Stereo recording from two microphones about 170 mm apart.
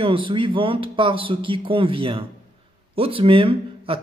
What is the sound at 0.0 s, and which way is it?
A man's voice, 30° right (ahead or behind).